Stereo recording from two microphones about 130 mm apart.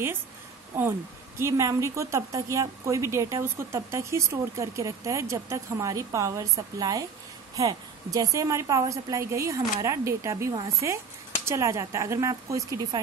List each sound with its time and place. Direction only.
1.4 s speech: 25° right (ahead or behind)